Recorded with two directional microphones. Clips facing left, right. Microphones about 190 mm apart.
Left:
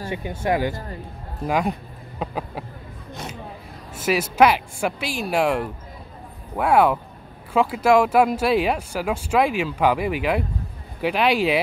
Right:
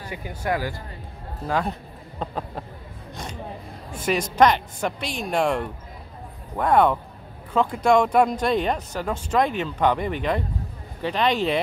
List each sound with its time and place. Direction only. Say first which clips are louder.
0.1 s speech: left 3 dB; 25° left (ahead or behind); by 2.6 s 10° left (ahead or behind)
3.9 s speech: left 2 dB; 5° left (ahead or behind)